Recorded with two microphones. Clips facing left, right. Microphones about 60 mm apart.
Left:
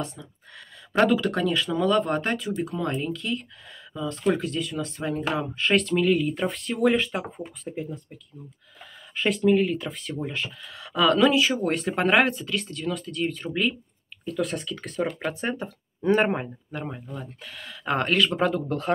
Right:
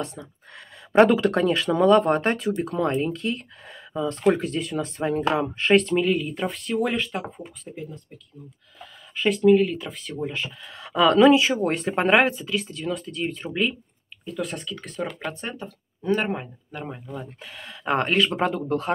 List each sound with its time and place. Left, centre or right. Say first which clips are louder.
0.0 s speech: right 1 dB; right
6.1 s speech: left 2 dB; centre
7.6 s speech: left 4 dB; centre
9.1 s speech: right 4 dB; centre
15.6 s speech: left 4 dB; left
16.7 s speech: even; centre
17.0 s speech: right 2 dB; centre